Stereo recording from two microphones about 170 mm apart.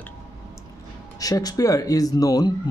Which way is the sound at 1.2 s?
20° left (ahead or behind).